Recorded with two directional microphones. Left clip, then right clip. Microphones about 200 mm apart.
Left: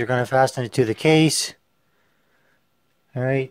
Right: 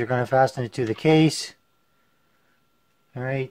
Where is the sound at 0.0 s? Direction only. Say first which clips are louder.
Left 1 dB; 45° left (ahead or behind).